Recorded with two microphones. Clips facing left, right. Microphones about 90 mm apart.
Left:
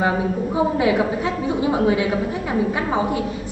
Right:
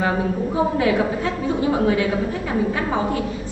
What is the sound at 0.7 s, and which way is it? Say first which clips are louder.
A woman's voice: left 1 dB; 20° left (ahead or behind).